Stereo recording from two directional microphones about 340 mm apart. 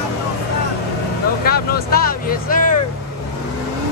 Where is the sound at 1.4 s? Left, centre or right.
Left.